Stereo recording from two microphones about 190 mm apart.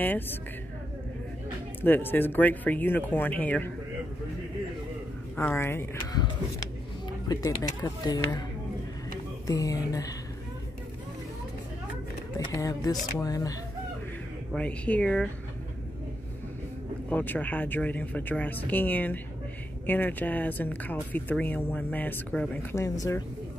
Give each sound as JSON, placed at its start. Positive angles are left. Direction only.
{"t": 0.0, "sound": "speech", "side_deg": 10}
{"t": 1.8, "sound": "speech", "side_deg": 10}
{"t": 5.3, "sound": "speech", "side_deg": 10}
{"t": 7.2, "sound": "speech", "side_deg": 15}
{"t": 9.5, "sound": "speech", "side_deg": 20}
{"t": 12.4, "sound": "speech", "side_deg": 20}
{"t": 14.5, "sound": "speech", "side_deg": 5}
{"t": 17.1, "sound": "speech", "side_deg": 10}